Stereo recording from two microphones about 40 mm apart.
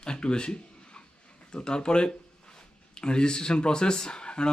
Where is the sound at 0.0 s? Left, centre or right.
Left.